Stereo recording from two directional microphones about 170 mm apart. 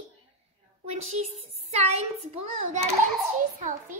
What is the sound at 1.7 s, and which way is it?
A child's voice, 40° right (ahead or behind).